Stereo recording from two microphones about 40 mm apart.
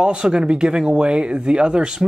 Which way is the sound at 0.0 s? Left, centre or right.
Right.